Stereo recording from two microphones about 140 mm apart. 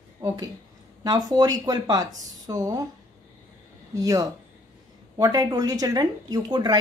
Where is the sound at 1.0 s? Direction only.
30° right (ahead or behind).